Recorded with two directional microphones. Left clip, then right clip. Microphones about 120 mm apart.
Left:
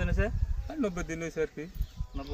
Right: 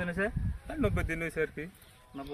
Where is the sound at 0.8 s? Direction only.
30° right (ahead or behind).